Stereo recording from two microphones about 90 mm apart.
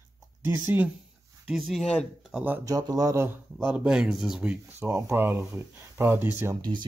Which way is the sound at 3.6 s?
10° right (ahead or behind).